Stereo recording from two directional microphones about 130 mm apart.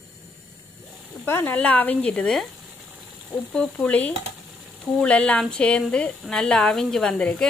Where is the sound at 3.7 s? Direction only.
10° left (ahead or behind).